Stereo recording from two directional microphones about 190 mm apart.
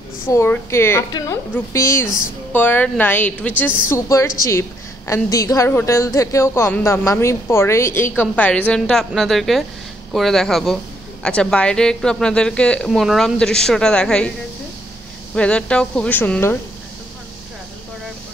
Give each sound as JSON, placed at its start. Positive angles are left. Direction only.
{"t": 0.3, "sound": "a woman's voice", "side_deg": 15}
{"t": 15.3, "sound": "a woman's voice", "side_deg": 5}